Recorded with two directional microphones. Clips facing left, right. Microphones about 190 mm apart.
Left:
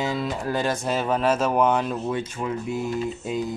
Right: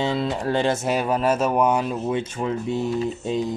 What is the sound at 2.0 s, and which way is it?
Speech, 25° right (ahead or behind).